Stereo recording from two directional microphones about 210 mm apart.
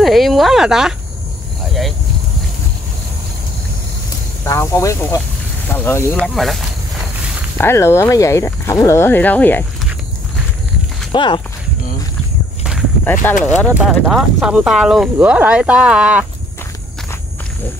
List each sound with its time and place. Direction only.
0.0 s speech: centre (ahead or behind)
1.7 s a sound: centre (ahead or behind)
4.5 s speech: 15° left (ahead or behind)
7.5 s speech: 10° left (ahead or behind)
11.1 s speech: 25° left (ahead or behind)
13.0 s speech: 10° left (ahead or behind)
13.3 s speech: 35° left (ahead or behind)
13.7 s speech: 5° right (ahead or behind)